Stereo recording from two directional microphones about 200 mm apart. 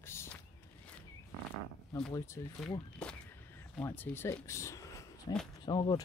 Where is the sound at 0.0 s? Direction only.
10° left (ahead or behind).